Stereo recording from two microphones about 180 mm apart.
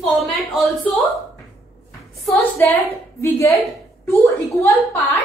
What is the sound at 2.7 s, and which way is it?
A woman's voice, 15° left (ahead or behind).